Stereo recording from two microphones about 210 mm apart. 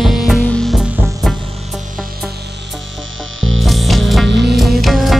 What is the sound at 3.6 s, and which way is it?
Music, centre (ahead or behind).